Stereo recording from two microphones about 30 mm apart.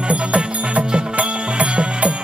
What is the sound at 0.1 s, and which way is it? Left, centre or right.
Music, right.